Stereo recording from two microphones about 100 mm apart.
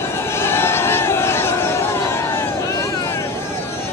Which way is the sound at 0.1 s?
25° left (ahead or behind).